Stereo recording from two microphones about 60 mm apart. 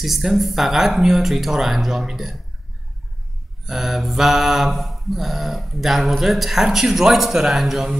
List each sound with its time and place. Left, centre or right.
0.0 s mantra: centre
3.6 s mantra: centre